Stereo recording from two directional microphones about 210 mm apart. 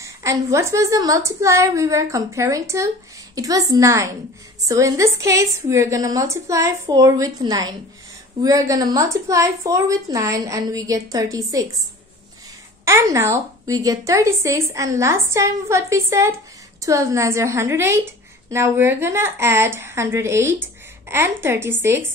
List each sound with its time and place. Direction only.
0.0 s a woman's voice: 15° right (ahead or behind)
12.8 s a woman's voice: 15° right (ahead or behind)